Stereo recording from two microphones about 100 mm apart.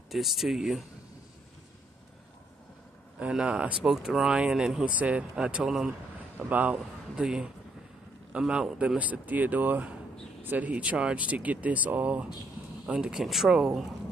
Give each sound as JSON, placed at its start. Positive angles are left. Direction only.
{"t": 0.1, "sound": "speech", "side_deg": 0}
{"t": 3.2, "sound": "speech", "side_deg": -10}
{"t": 7.2, "sound": "speech", "side_deg": -5}